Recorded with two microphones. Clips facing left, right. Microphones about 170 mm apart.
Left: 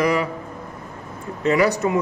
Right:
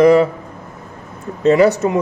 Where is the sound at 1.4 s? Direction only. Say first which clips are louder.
Right 7 dB; 25° right (ahead or behind).